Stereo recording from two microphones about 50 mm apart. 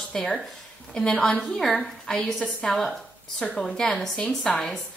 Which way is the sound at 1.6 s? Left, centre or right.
Centre.